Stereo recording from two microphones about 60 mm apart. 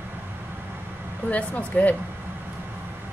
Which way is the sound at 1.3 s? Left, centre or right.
Left.